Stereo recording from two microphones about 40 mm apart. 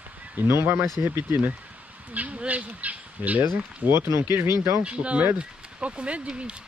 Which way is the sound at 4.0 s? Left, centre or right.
Right.